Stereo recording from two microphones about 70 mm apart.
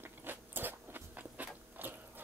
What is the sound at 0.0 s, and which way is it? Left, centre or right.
Biting, right.